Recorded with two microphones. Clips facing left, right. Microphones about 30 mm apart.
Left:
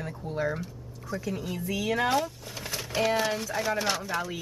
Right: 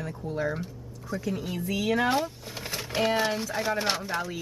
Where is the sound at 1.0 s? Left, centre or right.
Centre.